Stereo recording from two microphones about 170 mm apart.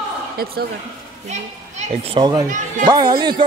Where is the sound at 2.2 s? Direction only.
25° right (ahead or behind).